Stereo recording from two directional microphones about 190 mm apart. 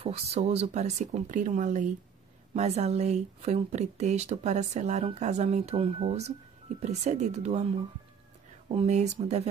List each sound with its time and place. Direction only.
0.0 s speech: 35° right (ahead or behind)
8.6 s speech: 35° right (ahead or behind)